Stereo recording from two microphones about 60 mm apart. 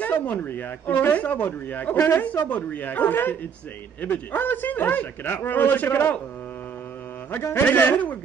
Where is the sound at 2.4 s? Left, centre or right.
Left.